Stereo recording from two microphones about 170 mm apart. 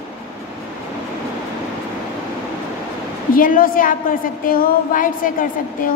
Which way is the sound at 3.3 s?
55° left (ahead or behind).